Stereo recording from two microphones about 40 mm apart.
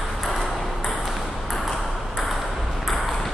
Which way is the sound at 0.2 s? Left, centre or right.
Centre.